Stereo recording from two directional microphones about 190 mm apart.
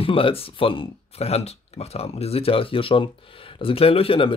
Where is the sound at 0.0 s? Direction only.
30° left (ahead or behind).